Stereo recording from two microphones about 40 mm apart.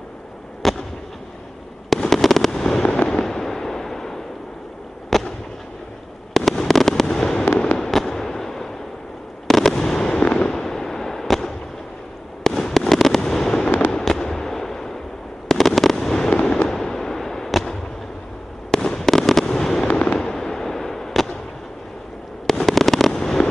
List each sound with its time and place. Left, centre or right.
0.6 s fireworks: centre
2.0 s fireworks: centre; by 3.2 s left
3.2 s fireworks: centre
6.3 s fireworks: centre
10.1 s fireworks: left
10.5 s fireworks: centre
16.3 s fireworks: left; by 17.7 s centre
18.8 s fireworks: centre
19.9 s fireworks: left
20.2 s fireworks: centre
22.5 s fireworks: centre